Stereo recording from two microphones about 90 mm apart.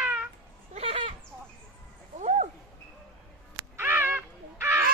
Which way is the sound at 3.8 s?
25° right (ahead or behind).